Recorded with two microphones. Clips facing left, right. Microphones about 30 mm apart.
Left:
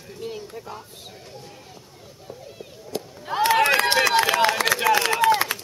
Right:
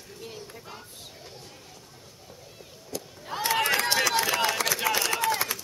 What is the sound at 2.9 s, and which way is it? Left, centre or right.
Chop, left.